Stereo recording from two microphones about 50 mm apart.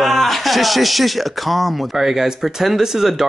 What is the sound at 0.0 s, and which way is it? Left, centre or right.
Speech, centre.